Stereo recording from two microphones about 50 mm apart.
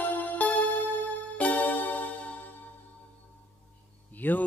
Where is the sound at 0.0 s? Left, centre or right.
Left.